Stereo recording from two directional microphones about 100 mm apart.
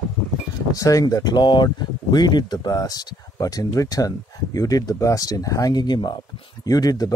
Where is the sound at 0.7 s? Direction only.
35° left (ahead or behind).